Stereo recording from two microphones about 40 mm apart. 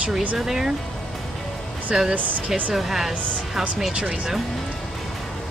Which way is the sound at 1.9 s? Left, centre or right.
Centre.